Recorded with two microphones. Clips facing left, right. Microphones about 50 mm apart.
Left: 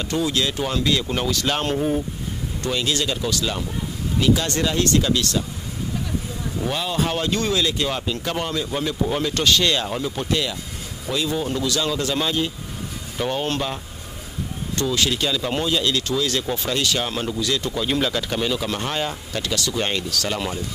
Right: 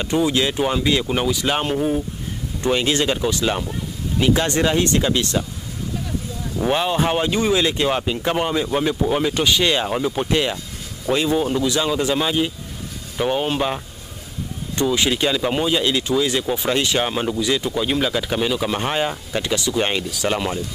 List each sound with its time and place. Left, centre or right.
0.0 s speech: right; by 2.0 s centre
2.6 s speech: right
6.6 s speech: right
14.8 s speech: centre